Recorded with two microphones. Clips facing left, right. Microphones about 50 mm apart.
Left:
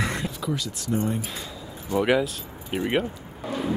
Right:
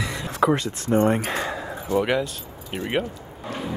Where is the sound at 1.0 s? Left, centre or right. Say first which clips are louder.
Right 8 dB; right.